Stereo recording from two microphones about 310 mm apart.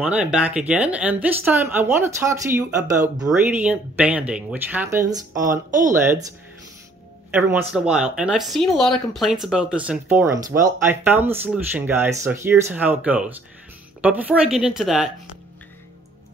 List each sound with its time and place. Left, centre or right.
0.0 s speech: centre
5.3 s speech: right
7.2 s speech: centre